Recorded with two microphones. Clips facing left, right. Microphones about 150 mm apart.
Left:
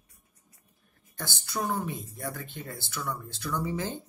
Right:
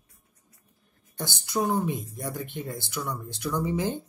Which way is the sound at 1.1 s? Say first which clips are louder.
Right 5 dB; 20° right (ahead or behind).